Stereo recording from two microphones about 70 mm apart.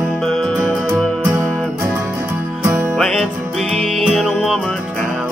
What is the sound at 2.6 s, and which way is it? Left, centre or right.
Music, right.